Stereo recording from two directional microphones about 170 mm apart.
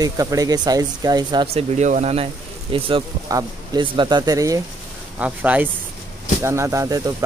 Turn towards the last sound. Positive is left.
turn(degrees=-20)  # may be behind; listen again after turning